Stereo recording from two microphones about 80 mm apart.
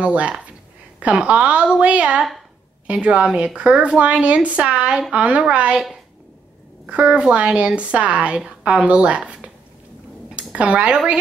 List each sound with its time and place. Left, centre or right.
0.0 s a woman's voice: centre
6.9 s a woman's voice: centre